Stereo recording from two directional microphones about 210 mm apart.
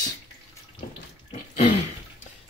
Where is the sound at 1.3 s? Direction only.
35° left (ahead or behind).